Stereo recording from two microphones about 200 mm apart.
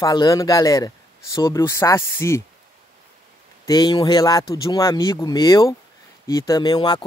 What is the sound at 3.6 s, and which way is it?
Speech, 20° left (ahead or behind).